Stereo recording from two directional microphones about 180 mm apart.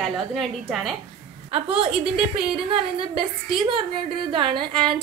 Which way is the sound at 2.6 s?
30° right (ahead or behind).